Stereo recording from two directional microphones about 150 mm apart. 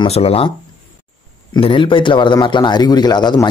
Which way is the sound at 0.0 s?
40° left (ahead or behind).